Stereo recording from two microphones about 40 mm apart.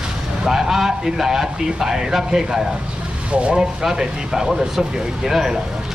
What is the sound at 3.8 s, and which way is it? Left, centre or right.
Speech, centre.